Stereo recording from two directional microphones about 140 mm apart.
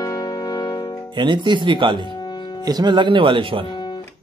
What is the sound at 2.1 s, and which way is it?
Music, 30° left (ahead or behind).